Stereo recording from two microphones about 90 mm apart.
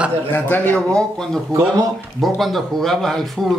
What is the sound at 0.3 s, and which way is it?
Speech, 20° left (ahead or behind).